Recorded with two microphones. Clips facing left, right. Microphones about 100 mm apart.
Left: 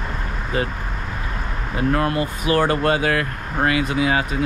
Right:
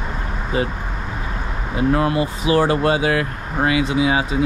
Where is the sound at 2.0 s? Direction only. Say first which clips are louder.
Right 2 dB; 20° right (ahead or behind).